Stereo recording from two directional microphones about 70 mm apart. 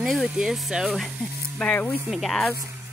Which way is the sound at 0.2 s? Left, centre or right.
Centre.